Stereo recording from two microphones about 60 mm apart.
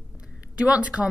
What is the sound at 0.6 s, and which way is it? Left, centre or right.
Speech, right.